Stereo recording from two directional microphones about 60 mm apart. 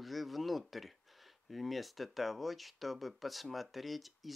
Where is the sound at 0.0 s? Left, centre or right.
Centre.